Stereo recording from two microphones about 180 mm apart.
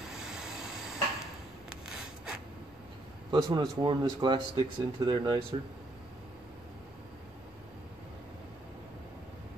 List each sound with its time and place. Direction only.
0.2 s rub: 5° right (ahead or behind)
3.3 s speech: 25° right (ahead or behind)